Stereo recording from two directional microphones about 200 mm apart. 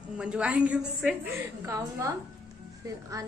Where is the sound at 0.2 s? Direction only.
5° right (ahead or behind).